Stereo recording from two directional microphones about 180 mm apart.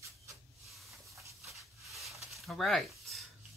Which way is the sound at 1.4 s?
Centre (ahead or behind).